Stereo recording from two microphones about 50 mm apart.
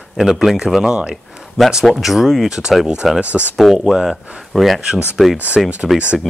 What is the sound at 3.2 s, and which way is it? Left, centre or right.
Speech, right.